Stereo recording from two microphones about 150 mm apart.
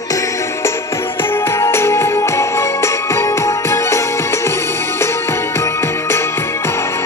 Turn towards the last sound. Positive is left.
turn(degrees=15)  # may be behind; listen again after turning